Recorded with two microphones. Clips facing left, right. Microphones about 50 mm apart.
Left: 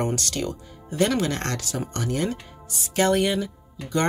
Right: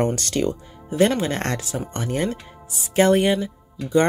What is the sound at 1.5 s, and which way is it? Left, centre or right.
Speech, centre.